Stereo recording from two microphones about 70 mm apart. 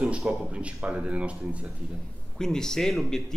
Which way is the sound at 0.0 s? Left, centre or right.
Centre.